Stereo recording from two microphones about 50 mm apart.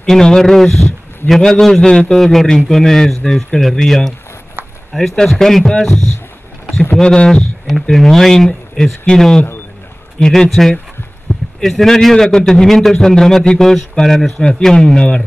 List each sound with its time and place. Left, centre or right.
0.0 s a man's voice: centre
4.6 s a sound: right
4.9 s a man's voice: centre
7.0 s a man's voice: centre
7.9 s a man's voice: centre
11.3 s a sound: centre
11.6 s a man's voice: centre